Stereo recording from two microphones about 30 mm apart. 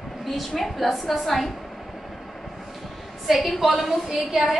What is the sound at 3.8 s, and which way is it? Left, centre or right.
Speech, centre.